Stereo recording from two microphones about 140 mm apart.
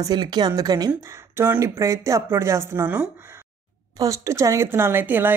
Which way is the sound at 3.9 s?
20° right (ahead or behind).